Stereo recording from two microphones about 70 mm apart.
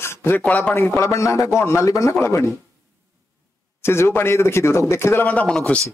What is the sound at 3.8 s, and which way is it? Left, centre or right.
Speech, left.